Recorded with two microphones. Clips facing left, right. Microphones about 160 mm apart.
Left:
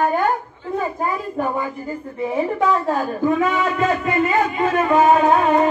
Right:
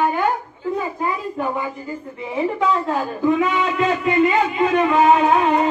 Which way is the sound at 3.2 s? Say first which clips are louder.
Right 1 dB; 45° left (ahead or behind).